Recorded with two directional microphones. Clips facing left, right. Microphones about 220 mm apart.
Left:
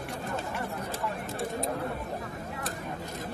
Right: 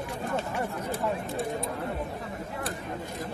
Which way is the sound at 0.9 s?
45° left (ahead or behind).